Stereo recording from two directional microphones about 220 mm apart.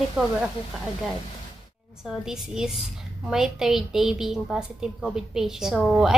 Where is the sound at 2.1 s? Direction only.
Centre (ahead or behind).